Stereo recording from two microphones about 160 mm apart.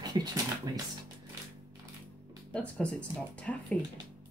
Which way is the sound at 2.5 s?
5° left (ahead or behind).